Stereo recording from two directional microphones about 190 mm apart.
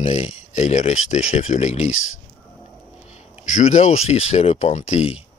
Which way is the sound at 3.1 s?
35° left (ahead or behind).